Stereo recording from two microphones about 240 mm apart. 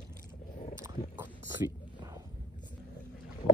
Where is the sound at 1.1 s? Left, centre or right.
Centre.